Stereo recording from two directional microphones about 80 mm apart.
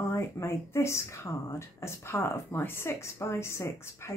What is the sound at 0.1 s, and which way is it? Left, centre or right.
Speech, left.